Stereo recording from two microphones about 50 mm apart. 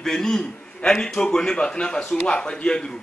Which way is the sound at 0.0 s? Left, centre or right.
Centre.